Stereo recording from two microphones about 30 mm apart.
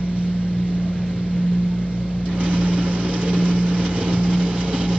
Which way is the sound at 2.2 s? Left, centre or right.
Right.